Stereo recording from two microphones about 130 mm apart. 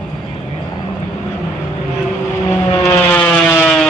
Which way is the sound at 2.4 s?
20° left (ahead or behind).